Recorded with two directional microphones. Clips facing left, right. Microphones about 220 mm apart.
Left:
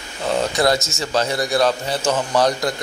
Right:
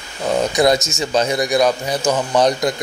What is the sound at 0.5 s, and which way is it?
A man's voice, 20° right (ahead or behind).